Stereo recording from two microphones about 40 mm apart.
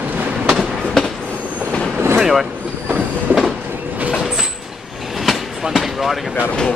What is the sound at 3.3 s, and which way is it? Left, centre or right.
Train, right.